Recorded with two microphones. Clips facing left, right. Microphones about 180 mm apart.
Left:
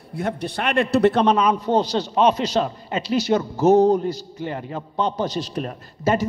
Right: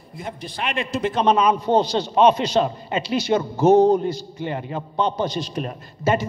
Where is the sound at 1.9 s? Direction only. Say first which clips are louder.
Right 2 dB; 40° left (ahead or behind).